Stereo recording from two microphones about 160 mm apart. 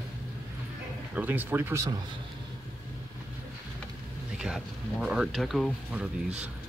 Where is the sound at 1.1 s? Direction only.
10° right (ahead or behind).